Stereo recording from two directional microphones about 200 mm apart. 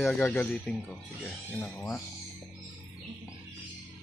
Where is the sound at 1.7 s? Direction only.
15° left (ahead or behind).